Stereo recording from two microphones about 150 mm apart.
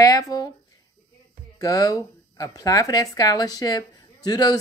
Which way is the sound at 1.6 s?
25° left (ahead or behind).